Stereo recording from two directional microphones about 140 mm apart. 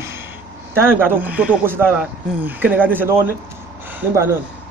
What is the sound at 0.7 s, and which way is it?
Speech, 15° right (ahead or behind).